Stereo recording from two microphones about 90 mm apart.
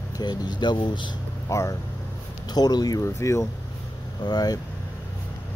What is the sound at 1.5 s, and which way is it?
Speech, 35° left (ahead or behind).